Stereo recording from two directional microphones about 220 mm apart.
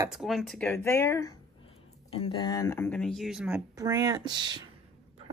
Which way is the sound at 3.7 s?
15° right (ahead or behind).